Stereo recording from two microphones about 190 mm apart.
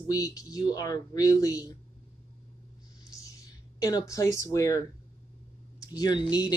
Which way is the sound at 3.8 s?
20° left (ahead or behind).